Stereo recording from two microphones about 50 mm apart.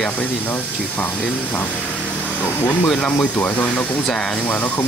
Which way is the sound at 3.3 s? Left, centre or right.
Left.